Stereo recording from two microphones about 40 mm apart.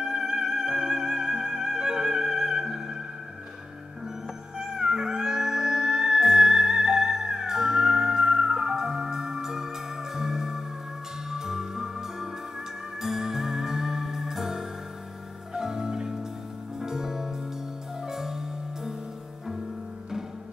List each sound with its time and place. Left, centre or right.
0.0 s music: centre
4.6 s music: centre